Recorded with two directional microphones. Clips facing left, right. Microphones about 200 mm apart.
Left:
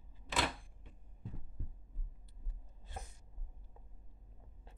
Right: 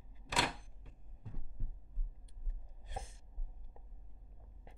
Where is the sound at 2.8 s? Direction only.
20° right (ahead or behind).